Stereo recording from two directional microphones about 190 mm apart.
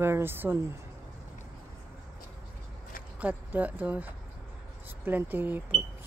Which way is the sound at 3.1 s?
10° right (ahead or behind).